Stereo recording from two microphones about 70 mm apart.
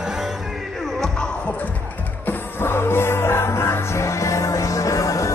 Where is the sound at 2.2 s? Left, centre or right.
Left.